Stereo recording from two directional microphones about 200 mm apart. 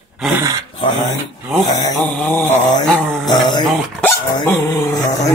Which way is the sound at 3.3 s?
20° left (ahead or behind).